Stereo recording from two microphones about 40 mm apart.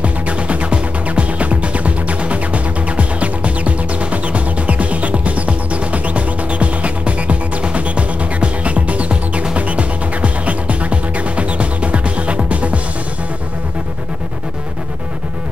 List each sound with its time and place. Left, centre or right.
0.0 s music: right